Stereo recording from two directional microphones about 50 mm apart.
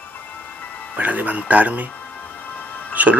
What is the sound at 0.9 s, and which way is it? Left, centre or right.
Speech, right.